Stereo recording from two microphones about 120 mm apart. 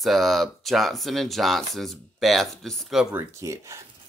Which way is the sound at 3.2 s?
25° right (ahead or behind).